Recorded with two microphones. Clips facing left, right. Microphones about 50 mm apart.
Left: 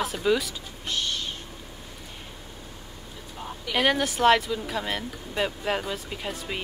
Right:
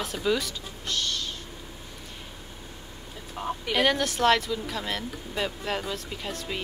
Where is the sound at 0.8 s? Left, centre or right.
Centre.